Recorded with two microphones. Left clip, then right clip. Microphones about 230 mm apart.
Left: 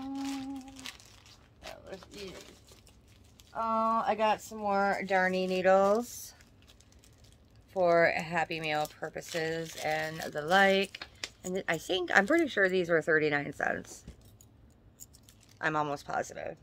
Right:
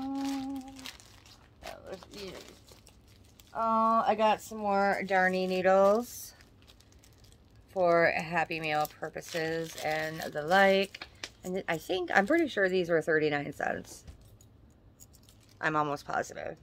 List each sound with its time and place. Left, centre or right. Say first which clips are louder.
0.0 s humming: right 3 dB; right
1.6 s a sound: right 2 dB; right
3.5 s speech: right 3 dB; centre
7.7 s speech: even; centre
15.6 s speech: right 1 dB; centre